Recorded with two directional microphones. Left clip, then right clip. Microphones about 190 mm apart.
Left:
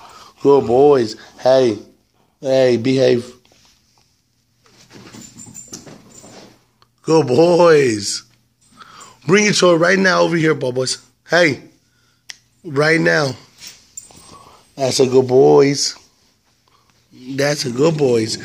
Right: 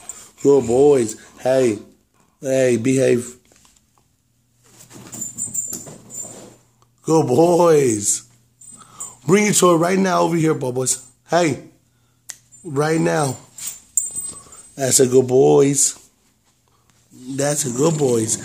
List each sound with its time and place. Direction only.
0.0 s a sound: centre (ahead or behind)
0.7 s speech: 5° right (ahead or behind)
6.8 s a man's voice: 5° right (ahead or behind)
12.6 s speech: centre (ahead or behind); by 16.0 s 20° right (ahead or behind)
17.3 s speech: 5° right (ahead or behind)